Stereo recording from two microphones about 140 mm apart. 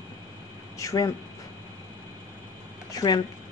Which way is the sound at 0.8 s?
25° left (ahead or behind).